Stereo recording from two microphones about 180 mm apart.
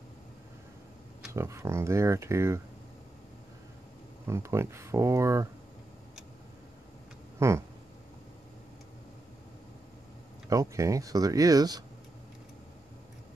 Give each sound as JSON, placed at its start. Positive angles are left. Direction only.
{"t": 1.3, "sound": "speech", "side_deg": -15}
{"t": 4.3, "sound": "speech", "side_deg": -15}
{"t": 7.3, "sound": "speech", "side_deg": -15}
{"t": 10.5, "sound": "speech", "side_deg": -15}